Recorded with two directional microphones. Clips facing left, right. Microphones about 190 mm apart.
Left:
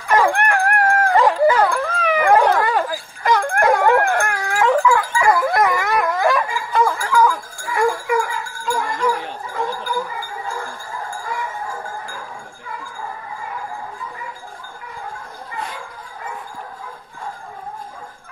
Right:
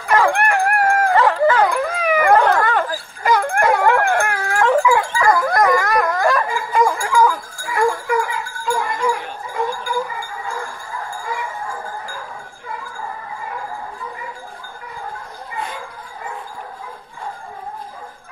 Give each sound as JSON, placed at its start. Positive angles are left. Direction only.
{"t": 0.1, "sound": "dog", "side_deg": 10}
{"t": 0.4, "sound": "dog", "side_deg": -10}
{"t": 1.1, "sound": "dog", "side_deg": 10}
{"t": 1.7, "sound": "dog", "side_deg": -10}
{"t": 2.3, "sound": "dog", "side_deg": 10}
{"t": 3.3, "sound": "dog", "side_deg": -10}
{"t": 3.8, "sound": "dog", "side_deg": 5}
{"t": 4.9, "sound": "dog", "side_deg": -25}
{"t": 5.2, "sound": "dog", "side_deg": 5}
{"t": 6.7, "sound": "a sound", "side_deg": -15}